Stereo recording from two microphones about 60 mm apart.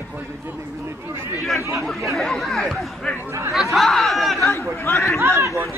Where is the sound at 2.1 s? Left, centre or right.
Centre.